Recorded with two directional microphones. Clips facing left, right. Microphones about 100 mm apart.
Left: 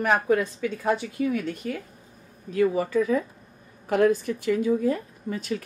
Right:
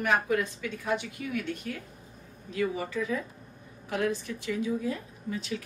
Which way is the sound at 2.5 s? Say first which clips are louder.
Left 8 dB; 45° left (ahead or behind).